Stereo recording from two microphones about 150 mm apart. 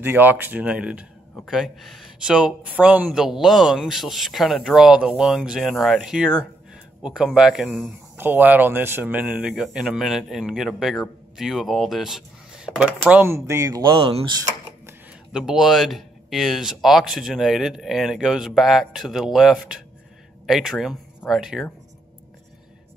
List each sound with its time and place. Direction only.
0.0 s speech: 10° right (ahead or behind); by 14.3 s 35° right (ahead or behind)
15.3 s speech: 5° right (ahead or behind)